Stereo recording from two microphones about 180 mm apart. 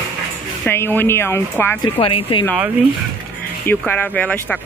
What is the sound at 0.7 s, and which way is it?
Speech, 10° left (ahead or behind).